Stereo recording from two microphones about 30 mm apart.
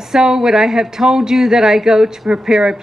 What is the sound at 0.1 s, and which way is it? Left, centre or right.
Speech, right.